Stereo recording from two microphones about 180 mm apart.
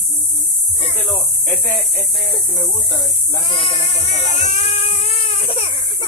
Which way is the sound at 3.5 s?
30° left (ahead or behind).